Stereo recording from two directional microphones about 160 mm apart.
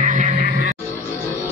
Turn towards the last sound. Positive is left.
turn(degrees=-50)  # may be behind; listen again after turning